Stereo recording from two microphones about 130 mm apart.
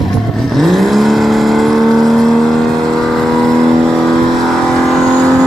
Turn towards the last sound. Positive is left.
turn(degrees=0)  # may be behind; listen again after turning